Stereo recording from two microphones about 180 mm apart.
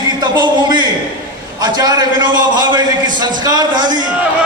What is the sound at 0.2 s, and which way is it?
A man's voice, 25° right (ahead or behind).